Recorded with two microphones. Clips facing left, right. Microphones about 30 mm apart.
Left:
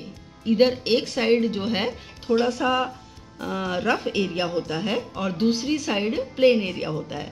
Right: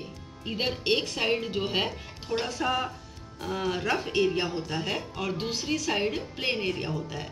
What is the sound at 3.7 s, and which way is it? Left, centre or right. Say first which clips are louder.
Speech: left 5 dB; left.